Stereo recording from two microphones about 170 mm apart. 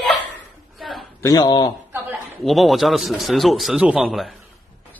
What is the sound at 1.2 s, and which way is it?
Speech, 25° left (ahead or behind).